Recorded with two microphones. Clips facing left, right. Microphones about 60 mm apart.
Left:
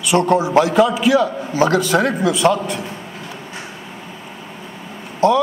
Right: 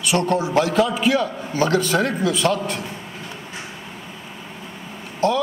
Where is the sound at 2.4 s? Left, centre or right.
Left.